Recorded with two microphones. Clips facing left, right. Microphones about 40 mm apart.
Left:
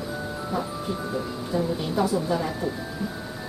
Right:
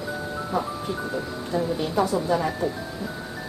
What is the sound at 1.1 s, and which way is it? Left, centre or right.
Speech, centre.